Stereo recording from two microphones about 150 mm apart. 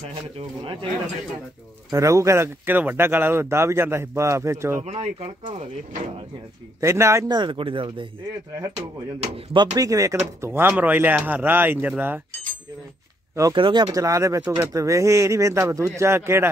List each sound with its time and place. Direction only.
1.9 s speech: 20° right (ahead or behind)
4.8 s speech: 45° right (ahead or behind)
6.8 s speech: 20° right (ahead or behind)
7.3 s speech: 35° right (ahead or behind)
8.7 s speech: 45° right (ahead or behind)
9.8 s speech: 20° right (ahead or behind)
13.4 s speech: 30° right (ahead or behind)